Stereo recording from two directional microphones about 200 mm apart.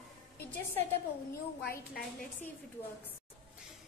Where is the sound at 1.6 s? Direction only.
50° left (ahead or behind).